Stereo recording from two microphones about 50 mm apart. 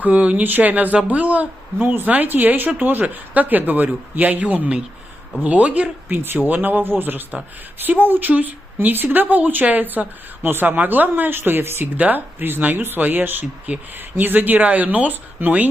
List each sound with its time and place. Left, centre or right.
0.0 s speech: right
6.1 s speech: right
12.0 s speech: right